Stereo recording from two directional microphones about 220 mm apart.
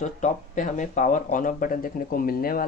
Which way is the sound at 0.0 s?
35° left (ahead or behind).